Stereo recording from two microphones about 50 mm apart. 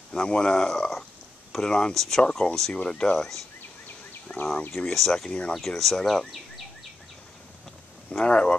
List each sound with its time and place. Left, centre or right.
0.1 s speech: centre
4.3 s speech: left
4.7 s speech: centre
8.1 s speech: left